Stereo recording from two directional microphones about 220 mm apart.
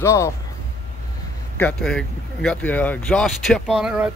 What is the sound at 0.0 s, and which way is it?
Speech, 15° left (ahead or behind).